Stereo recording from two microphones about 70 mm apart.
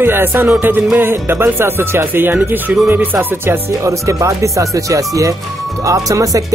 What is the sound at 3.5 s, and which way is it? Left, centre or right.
Speech, right.